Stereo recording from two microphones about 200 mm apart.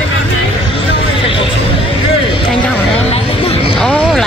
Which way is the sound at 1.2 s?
25° left (ahead or behind).